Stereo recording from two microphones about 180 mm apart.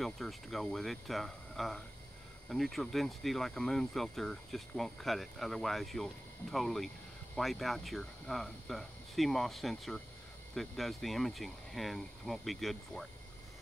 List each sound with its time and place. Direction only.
0.0 s speech: centre (ahead or behind)